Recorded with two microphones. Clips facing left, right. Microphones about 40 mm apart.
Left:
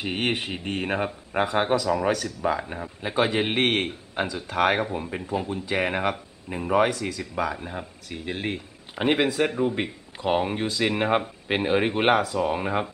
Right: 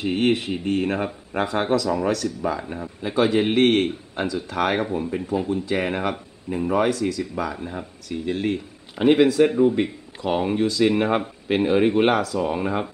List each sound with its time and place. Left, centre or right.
0.0 s speech: centre